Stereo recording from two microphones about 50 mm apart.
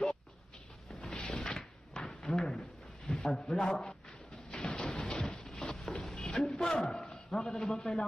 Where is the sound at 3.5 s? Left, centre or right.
Centre.